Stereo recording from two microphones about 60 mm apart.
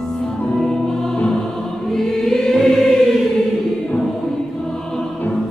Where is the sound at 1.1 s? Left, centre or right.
Centre.